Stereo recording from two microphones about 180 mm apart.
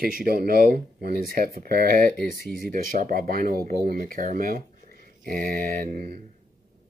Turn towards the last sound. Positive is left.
turn(degrees=-50)  # may be behind; listen again after turning